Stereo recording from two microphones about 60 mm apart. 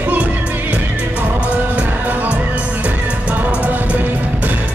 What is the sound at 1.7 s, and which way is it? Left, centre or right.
Music, right.